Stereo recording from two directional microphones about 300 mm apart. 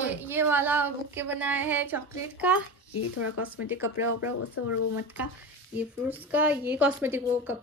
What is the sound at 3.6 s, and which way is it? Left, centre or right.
Speech, centre.